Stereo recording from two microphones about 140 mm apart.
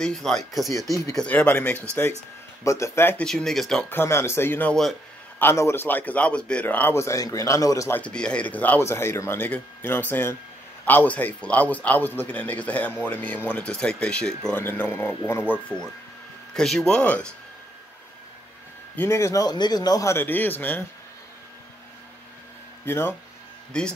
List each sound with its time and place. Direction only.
0.0 s a man's voice: 5° left (ahead or behind)
2.6 s speech: 20° left (ahead or behind)
3.3 s speech: 5° left (ahead or behind)
3.9 s a man's voice: 20° left (ahead or behind)
5.4 s a man's voice: 15° left (ahead or behind)
8.0 s a man's voice: 5° left (ahead or behind)
18.9 s speech: 20° left (ahead or behind)
22.8 s a man's voice: 15° left (ahead or behind)
23.7 s speech: 5° left (ahead or behind)